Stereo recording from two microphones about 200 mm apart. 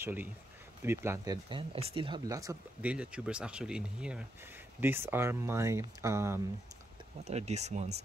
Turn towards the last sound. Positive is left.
turn(degrees=-35)  # may be behind; listen again after turning